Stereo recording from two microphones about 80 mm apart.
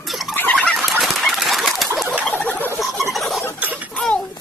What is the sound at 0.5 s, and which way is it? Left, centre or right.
Chicken, centre.